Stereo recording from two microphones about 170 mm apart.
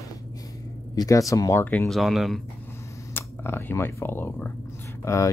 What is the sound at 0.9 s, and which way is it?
Speech, 20° left (ahead or behind).